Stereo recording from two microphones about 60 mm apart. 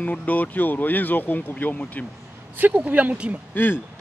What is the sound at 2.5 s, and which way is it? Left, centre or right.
Speech, right.